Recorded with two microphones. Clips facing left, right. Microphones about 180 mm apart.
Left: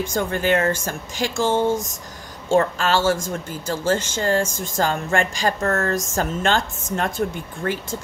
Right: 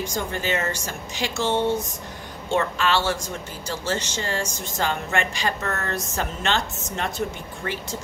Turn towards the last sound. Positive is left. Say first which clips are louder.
# left 5 dB
turn(degrees=50)  # may be behind; listen again after turning